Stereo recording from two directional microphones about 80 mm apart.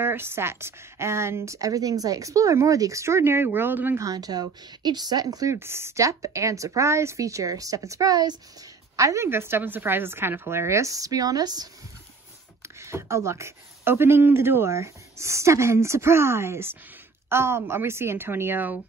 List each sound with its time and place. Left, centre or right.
0.0 s speech: right
4.0 s a woman's voice: right
5.5 s speech: right
8.9 s speech: right
12.6 s speech: right